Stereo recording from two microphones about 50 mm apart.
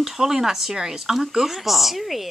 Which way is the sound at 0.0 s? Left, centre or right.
Centre.